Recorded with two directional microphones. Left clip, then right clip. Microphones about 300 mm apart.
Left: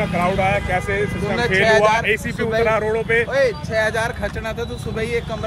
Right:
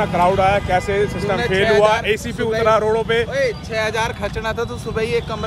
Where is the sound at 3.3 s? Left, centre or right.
Centre.